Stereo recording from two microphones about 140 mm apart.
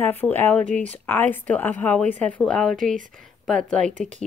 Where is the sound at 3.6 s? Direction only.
5° left (ahead or behind).